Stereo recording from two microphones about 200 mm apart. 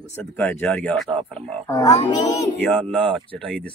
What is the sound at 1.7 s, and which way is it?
Speech, 15° left (ahead or behind).